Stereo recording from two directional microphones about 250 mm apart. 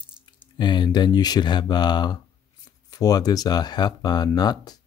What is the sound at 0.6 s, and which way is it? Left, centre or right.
Speech, centre.